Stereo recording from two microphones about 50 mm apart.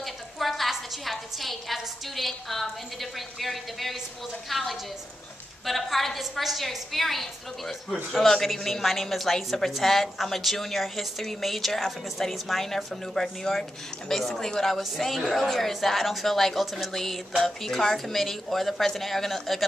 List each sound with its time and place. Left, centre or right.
0.0 s a woman's voice: centre
15.1 s a woman's voice: centre